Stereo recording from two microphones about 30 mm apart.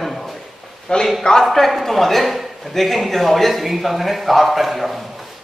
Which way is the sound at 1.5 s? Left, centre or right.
Centre.